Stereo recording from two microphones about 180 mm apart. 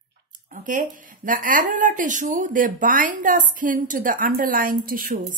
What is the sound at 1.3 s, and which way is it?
Speech, 50° right (ahead or behind).